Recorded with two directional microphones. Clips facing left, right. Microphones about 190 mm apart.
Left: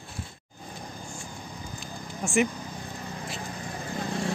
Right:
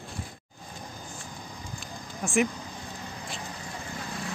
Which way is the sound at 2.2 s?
Centre (ahead or behind).